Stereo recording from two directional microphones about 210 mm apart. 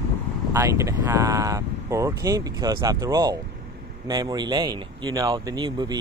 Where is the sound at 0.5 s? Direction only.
15° right (ahead or behind).